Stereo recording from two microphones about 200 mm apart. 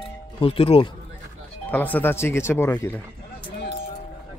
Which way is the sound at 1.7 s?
10° left (ahead or behind).